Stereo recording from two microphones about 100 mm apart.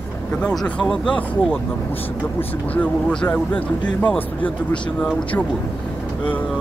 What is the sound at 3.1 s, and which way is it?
Speech, 15° left (ahead or behind).